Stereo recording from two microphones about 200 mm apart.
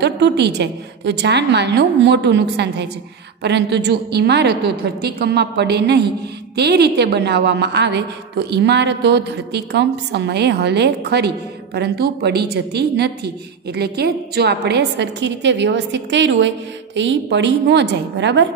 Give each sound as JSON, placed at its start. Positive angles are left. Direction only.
{"t": 0.0, "sound": "a woman's voice", "side_deg": -55}